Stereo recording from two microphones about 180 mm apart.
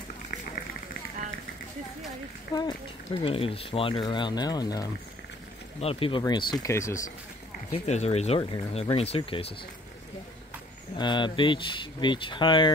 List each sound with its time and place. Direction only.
2.5 s speech: 25° left (ahead or behind)
6.6 s speech: 15° left (ahead or behind)
7.7 s speech: 40° left (ahead or behind)
11.0 s speech: 25° left (ahead or behind)